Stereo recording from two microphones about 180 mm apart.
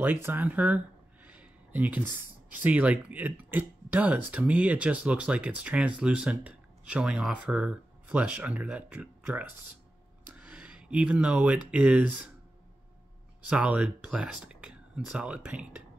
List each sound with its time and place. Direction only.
0.0 s speech: 10° right (ahead or behind)
10.3 s a sound: 5° right (ahead or behind)
11.7 s speech: 5° right (ahead or behind)
13.5 s speech: 5° right (ahead or behind)